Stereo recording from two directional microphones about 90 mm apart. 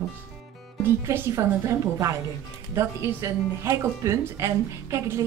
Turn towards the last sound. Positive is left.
turn(degrees=-30)  # may be behind; listen again after turning